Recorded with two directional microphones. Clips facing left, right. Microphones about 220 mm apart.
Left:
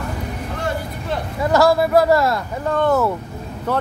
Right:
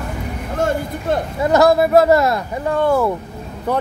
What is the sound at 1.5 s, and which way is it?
Speech, 20° right (ahead or behind).